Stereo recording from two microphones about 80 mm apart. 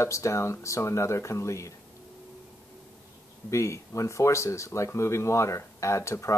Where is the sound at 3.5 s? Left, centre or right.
Left.